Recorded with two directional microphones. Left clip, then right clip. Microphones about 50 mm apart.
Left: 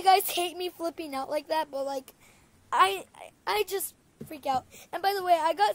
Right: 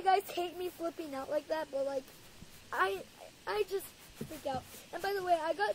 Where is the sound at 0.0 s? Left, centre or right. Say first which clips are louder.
Left 8 dB; left.